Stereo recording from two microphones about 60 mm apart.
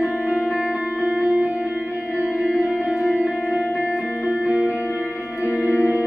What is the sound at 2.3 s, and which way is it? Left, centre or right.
Music, centre.